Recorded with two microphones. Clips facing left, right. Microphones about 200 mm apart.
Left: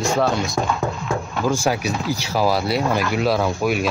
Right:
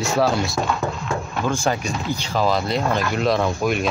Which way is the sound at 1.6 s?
5° left (ahead or behind).